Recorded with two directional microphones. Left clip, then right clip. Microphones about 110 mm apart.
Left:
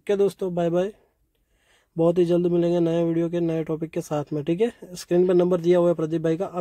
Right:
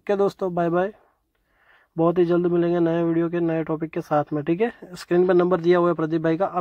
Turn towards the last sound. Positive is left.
turn(degrees=5)  # may be behind; listen again after turning